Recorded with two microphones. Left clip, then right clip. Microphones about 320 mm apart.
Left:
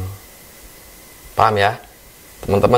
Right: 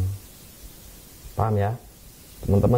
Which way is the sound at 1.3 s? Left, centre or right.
Centre.